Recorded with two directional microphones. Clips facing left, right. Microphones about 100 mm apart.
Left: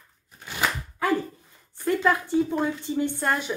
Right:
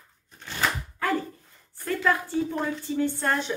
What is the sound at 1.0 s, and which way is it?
Dog, 15° left (ahead or behind).